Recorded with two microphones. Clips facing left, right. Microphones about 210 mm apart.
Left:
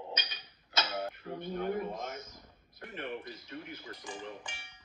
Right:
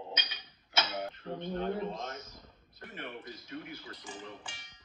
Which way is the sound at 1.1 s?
10° left (ahead or behind).